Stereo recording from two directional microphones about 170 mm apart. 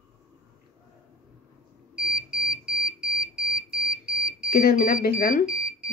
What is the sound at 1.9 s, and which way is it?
Alarm, 5° right (ahead or behind).